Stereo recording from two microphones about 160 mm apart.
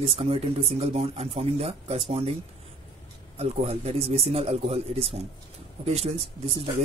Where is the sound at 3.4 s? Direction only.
40° right (ahead or behind).